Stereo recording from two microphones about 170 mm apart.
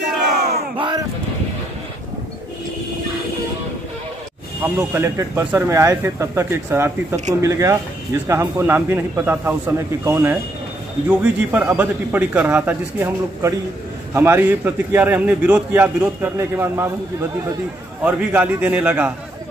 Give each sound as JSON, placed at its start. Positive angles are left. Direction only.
{"t": 0.7, "sound": "a sound", "side_deg": -25}
{"t": 4.6, "sound": "speech", "side_deg": -15}
{"t": 18.0, "sound": "speech", "side_deg": -10}